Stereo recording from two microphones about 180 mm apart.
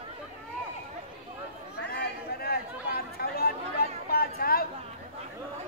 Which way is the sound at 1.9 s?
60° left (ahead or behind).